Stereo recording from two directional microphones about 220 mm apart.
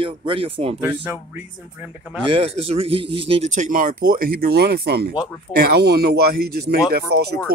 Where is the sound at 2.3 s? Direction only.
25° right (ahead or behind); by 7.2 s 45° right (ahead or behind).